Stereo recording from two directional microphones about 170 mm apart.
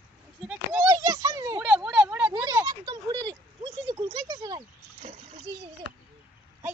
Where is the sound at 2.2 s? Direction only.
25° right (ahead or behind).